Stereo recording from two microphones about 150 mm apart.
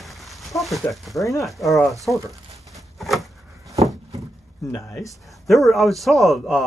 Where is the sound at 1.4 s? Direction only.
Centre (ahead or behind).